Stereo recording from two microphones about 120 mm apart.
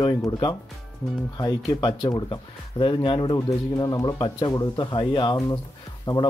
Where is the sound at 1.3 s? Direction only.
35° left (ahead or behind).